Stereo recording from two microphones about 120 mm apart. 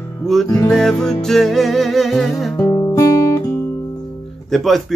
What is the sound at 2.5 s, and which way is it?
Guitar, 25° left (ahead or behind).